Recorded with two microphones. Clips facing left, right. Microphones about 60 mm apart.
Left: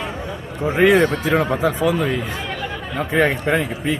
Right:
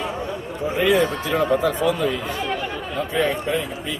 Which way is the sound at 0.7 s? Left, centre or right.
Left.